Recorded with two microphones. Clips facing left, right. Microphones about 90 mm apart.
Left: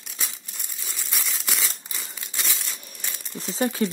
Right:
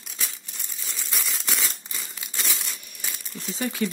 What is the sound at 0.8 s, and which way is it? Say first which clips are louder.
Crumpling: even; 5° left (ahead or behind).